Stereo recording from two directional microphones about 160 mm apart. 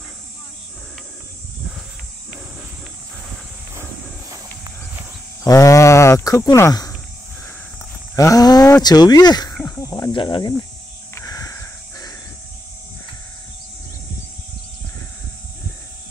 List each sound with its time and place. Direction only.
4.3 s a sound: 20° right (ahead or behind)
5.4 s cricket: 20° left (ahead or behind)
8.2 s livestock: 20° left (ahead or behind)
8.8 s speech: 25° left (ahead or behind)
9.6 s cricket: 20° left (ahead or behind)
11.1 s a sound: 20° left (ahead or behind)